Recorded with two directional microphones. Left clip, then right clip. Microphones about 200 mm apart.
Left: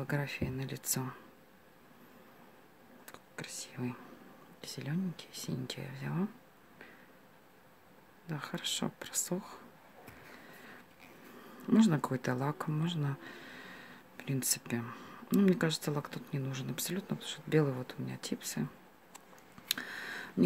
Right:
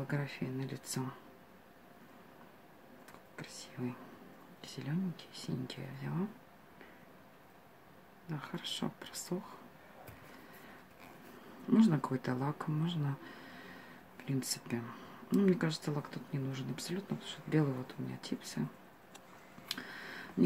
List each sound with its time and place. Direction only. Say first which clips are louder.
0.0 s speech: left 3 dB; 50° left (ahead or behind)
3.1 s whispering: left 5 dB; 50° left (ahead or behind)
4.6 s speech: left 1 dB; 45° left (ahead or behind)
8.3 s speech: left 4 dB; 50° left (ahead or behind)
11.7 s speech: left 1 dB; 50° left (ahead or behind)
19.7 s a sound: left 5 dB; 50° left (ahead or behind)